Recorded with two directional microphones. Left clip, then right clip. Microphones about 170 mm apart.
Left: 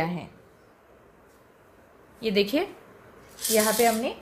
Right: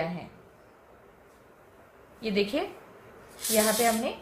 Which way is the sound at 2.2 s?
55° left (ahead or behind).